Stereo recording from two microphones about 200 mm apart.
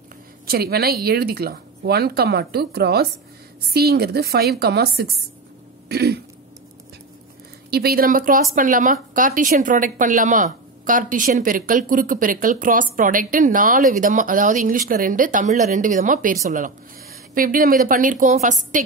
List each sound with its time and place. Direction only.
0.5 s speech: 50° right (ahead or behind)
5.9 s throat clearing: 55° right (ahead or behind)
7.7 s speech: 50° right (ahead or behind)